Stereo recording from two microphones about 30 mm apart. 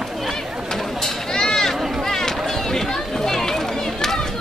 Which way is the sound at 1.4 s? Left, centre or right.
Centre.